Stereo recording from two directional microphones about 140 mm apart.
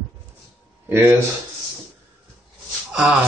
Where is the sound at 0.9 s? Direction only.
10° right (ahead or behind).